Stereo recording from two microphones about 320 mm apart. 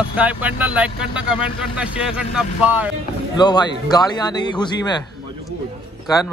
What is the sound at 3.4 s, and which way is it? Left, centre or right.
Speech, centre.